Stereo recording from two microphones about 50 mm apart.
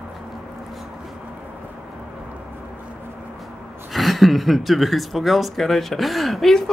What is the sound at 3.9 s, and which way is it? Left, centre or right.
Speech, centre.